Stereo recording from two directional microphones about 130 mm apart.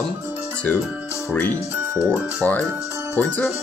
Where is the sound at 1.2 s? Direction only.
15° left (ahead or behind).